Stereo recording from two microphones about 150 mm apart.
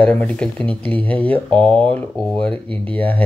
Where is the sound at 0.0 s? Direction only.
10° left (ahead or behind).